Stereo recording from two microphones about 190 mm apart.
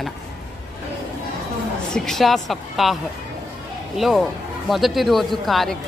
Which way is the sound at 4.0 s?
Centre (ahead or behind).